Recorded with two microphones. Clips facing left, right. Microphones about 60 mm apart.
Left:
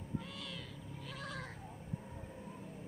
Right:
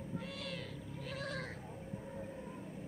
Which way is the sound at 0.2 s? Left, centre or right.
Right.